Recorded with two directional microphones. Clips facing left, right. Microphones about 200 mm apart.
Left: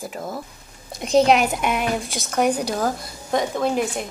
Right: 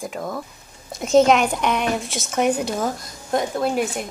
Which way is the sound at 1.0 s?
Centre (ahead or behind).